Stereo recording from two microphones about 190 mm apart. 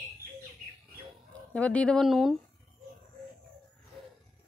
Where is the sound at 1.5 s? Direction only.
5° left (ahead or behind).